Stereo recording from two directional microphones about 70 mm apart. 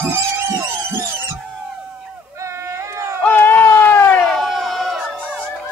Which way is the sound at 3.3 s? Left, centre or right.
Left.